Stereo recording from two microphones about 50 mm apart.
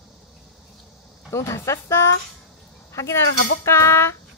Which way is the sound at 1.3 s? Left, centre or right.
Left.